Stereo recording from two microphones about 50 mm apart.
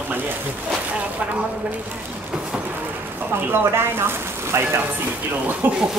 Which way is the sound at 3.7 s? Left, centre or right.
Right.